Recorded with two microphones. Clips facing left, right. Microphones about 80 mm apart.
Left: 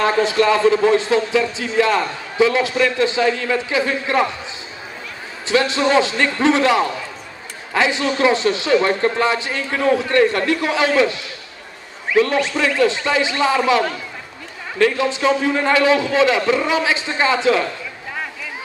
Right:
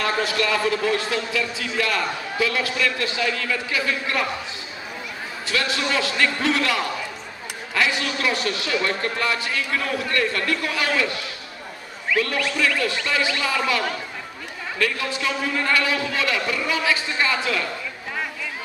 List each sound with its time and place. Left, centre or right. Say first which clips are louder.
0.0 s a man's voice: left 7 dB; left
5.5 s a man's voice: left 8 dB; left
15.0 s a man's voice: left 8 dB; left